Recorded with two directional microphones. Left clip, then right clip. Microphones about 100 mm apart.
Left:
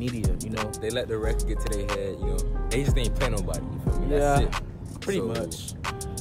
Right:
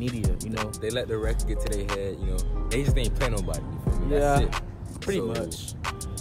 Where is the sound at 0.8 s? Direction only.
40° left (ahead or behind).